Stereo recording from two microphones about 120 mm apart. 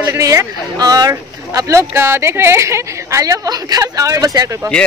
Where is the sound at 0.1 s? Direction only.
25° right (ahead or behind).